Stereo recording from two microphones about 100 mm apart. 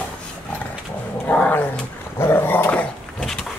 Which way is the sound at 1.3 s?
15° left (ahead or behind).